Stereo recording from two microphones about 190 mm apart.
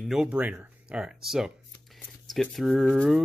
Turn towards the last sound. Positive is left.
turn(degrees=0)  # may be behind; listen again after turning